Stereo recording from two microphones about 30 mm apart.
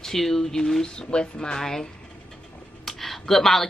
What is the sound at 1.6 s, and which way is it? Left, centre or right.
Speech, centre.